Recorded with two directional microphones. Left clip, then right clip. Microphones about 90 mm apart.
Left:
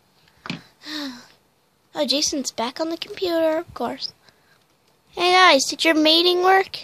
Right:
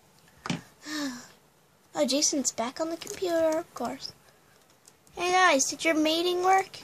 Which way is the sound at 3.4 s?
90° left.